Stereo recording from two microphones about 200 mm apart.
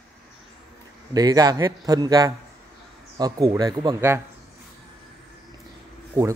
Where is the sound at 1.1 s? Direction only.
20° right (ahead or behind).